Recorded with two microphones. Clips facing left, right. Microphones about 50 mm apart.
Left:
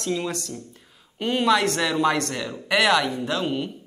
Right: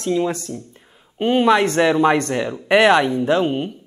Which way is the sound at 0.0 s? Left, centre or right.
Right.